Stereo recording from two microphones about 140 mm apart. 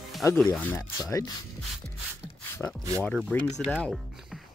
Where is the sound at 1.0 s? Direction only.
25° left (ahead or behind).